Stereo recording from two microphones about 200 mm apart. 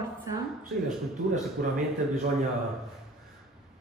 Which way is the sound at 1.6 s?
45° right (ahead or behind).